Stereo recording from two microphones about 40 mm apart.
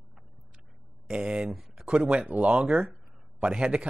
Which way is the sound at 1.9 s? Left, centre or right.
Right.